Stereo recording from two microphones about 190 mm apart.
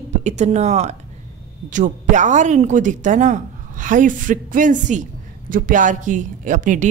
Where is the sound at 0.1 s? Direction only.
35° right (ahead or behind).